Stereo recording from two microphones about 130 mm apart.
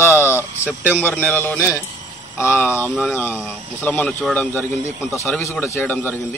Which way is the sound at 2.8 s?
Centre (ahead or behind).